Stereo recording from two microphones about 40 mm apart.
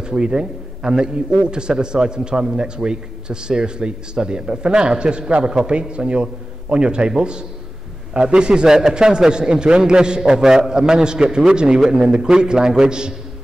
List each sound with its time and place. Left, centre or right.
0.0 s speech: right
8.6 s speech: centre